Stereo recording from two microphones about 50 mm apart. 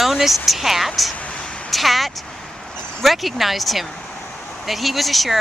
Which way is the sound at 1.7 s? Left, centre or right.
Centre.